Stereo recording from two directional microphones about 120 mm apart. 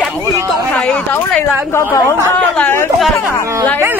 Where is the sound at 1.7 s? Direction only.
20° left (ahead or behind).